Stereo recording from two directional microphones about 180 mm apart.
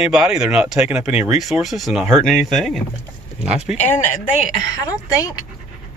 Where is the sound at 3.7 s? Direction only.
40° left (ahead or behind).